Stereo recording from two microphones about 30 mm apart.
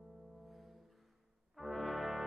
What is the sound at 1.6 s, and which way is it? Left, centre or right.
Brass instrument, centre.